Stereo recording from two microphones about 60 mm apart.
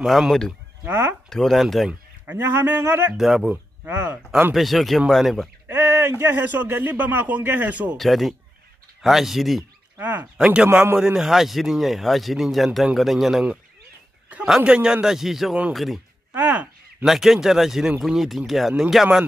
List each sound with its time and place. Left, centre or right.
0.0 s speech: centre
0.8 s speech: right
1.3 s speech: centre
2.3 s speech: right
3.2 s speech: centre
3.8 s speech: right
4.6 s speech: centre
5.7 s speech: right
8.0 s speech: centre
9.9 s speech: right
11.0 s speech: centre
14.6 s a man's voice: centre
16.3 s speech: right
17.0 s speech: centre